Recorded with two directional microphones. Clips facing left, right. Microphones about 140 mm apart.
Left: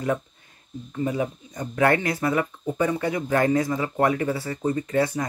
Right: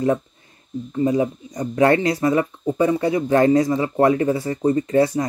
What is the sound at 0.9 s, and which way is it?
Speech, 30° right (ahead or behind).